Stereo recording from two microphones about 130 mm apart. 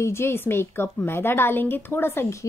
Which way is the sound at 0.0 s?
20° left (ahead or behind).